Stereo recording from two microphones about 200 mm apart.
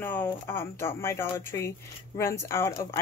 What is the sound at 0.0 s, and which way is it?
Speech, 10° left (ahead or behind).